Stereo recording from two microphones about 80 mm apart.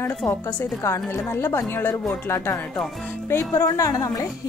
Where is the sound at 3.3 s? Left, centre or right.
Left.